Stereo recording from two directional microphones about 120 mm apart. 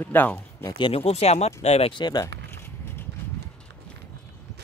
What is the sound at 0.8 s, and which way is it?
Speech, 55° left (ahead or behind).